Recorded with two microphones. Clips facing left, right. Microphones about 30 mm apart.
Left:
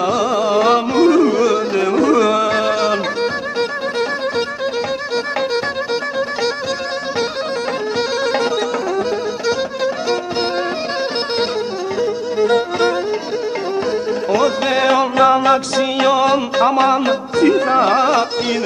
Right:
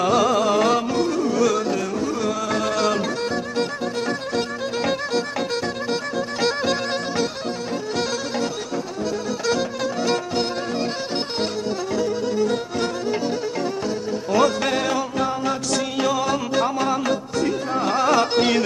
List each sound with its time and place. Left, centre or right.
0.0 s music: centre
0.9 s music: left
1.4 s carnatic music: left
1.9 s music: left
2.6 s music: left
12.4 s music: left
14.3 s music: centre
14.7 s music: left
15.1 s music: left
15.8 s music: left
17.4 s music: left
17.9 s carnatic music: left
18.3 s carnatic music: centre